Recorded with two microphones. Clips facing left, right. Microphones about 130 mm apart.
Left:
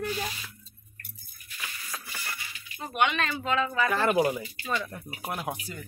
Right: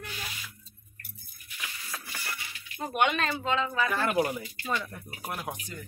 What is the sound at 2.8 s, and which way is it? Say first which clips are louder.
Speech: even; 45° right (ahead or behind).